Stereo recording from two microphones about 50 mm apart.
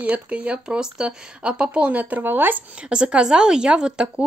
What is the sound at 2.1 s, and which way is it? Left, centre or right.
Speech, right.